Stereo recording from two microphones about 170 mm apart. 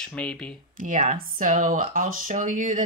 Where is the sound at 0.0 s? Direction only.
5° left (ahead or behind).